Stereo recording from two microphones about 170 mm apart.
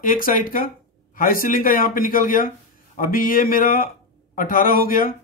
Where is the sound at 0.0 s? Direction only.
55° left (ahead or behind).